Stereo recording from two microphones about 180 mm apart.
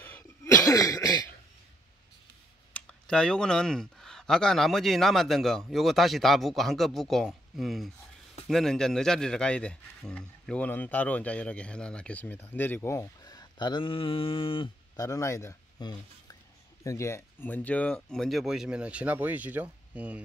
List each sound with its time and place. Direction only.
0.0 s cough: 15° left (ahead or behind)
2.7 s speech: 5° left (ahead or behind); by 15.0 s 30° left (ahead or behind)
15.0 s speech: 15° left (ahead or behind); by 20.2 s 10° right (ahead or behind)